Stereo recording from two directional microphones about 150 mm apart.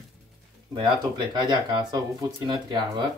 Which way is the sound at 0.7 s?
30° right (ahead or behind).